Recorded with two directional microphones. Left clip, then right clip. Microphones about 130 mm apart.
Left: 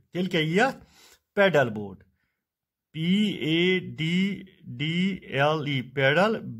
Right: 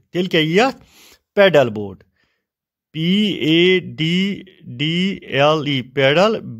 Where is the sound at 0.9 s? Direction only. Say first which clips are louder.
Right 8 dB; 25° right (ahead or behind).